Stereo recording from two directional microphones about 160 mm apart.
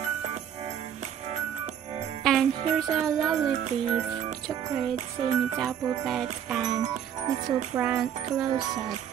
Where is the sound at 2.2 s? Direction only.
Centre (ahead or behind).